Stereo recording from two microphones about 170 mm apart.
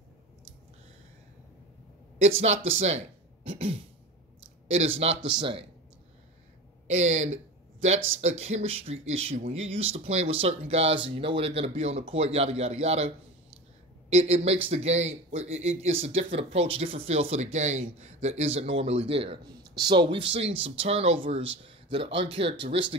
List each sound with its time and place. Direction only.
2.1 s speech: 40° right (ahead or behind)
3.4 s throat clearing: 30° right (ahead or behind)
4.6 s speech: 35° right (ahead or behind)
6.9 s speech: 40° right (ahead or behind)
14.1 s speech: 40° right (ahead or behind)